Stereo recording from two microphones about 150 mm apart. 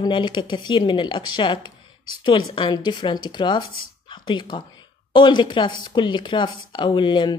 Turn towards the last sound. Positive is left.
turn(degrees=30)  # may be behind; listen again after turning